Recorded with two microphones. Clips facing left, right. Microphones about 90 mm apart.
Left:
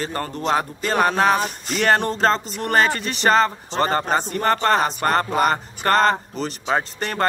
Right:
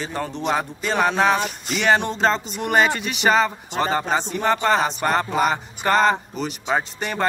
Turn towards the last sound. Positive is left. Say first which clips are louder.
# left 1 dB
turn(degrees=-5)  # may be behind; listen again after turning